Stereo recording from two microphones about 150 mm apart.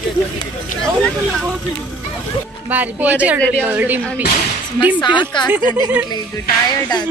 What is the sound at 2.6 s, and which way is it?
A woman's voice, 10° right (ahead or behind).